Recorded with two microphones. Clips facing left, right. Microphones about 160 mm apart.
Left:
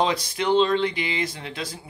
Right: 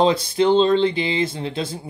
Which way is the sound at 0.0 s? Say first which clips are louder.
Right 7 dB; 30° right (ahead or behind).